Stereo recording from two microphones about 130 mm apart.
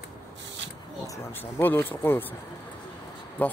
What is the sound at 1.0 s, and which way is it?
Speech, 15° left (ahead or behind).